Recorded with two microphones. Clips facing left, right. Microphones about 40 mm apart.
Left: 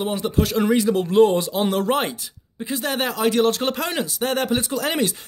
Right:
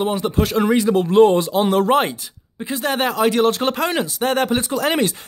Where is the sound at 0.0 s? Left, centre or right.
Right.